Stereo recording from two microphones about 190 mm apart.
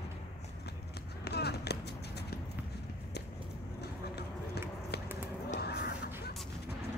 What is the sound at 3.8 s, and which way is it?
Clip-clop, 60° left (ahead or behind).